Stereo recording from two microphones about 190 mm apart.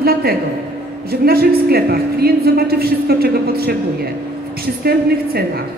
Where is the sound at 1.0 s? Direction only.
55° right (ahead or behind).